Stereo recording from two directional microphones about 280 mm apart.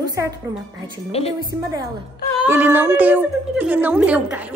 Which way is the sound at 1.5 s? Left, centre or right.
Centre.